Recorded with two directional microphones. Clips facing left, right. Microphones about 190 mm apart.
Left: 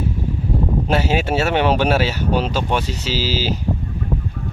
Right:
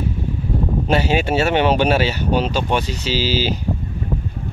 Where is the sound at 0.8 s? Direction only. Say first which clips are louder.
Right 3 dB; 5° left (ahead or behind).